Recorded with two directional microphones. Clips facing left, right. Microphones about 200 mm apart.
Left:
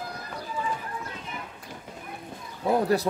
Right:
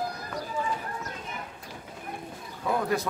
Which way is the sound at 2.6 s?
35° left (ahead or behind).